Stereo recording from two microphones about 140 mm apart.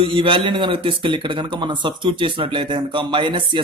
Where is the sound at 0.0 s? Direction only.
40° right (ahead or behind).